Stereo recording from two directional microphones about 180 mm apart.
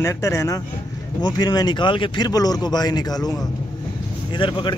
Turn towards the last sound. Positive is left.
turn(degrees=25)  # may be behind; listen again after turning